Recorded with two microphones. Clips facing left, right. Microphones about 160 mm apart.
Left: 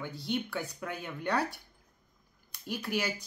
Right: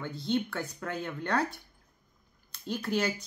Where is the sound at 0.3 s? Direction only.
15° left (ahead or behind).